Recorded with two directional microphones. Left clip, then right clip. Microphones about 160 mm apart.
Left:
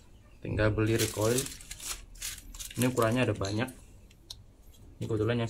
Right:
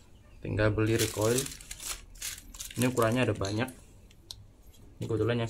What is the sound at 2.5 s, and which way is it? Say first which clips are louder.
Speech: even; 30° right (ahead or behind).